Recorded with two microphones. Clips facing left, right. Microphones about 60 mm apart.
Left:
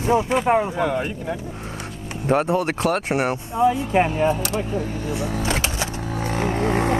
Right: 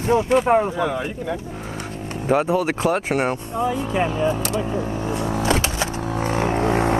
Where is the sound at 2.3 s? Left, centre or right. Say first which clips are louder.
Right 1 dB; centre.